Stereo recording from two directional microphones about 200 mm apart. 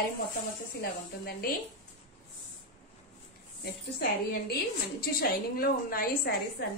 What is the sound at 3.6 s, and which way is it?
A woman's voice, 50° left (ahead or behind).